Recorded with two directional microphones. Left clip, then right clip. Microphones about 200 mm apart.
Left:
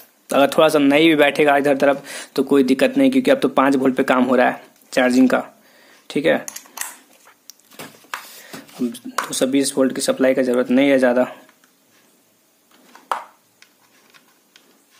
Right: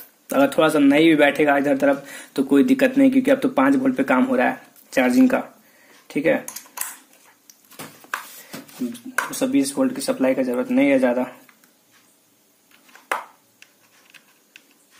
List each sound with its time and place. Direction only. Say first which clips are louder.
0.3 s a man's voice: left 3 dB; 30° left (ahead or behind)
8.5 s a man's voice: left 6 dB; 30° left (ahead or behind)